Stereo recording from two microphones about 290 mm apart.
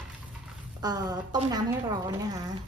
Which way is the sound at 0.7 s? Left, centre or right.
Centre.